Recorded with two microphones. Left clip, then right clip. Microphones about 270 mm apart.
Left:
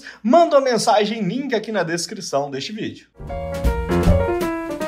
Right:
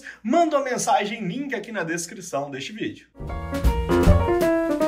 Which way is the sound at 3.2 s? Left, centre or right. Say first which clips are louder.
Left 4 dB; centre.